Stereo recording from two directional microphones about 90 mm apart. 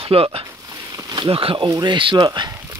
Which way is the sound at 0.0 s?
90° right.